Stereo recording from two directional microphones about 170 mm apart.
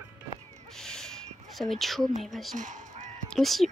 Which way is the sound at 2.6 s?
45° right (ahead or behind).